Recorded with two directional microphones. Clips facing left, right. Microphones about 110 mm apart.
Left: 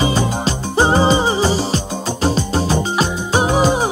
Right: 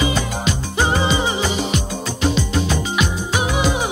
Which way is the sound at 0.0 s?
35° left (ahead or behind).